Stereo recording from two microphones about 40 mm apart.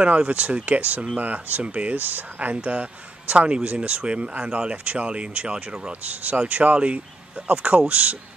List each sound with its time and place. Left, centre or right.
0.0 s speech: right
1.6 s speech: right
2.0 s speech: right
2.3 s speech: right
6.5 s speech: right